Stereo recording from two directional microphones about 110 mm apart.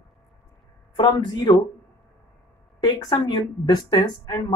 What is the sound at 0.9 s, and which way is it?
Speech, 45° left (ahead or behind).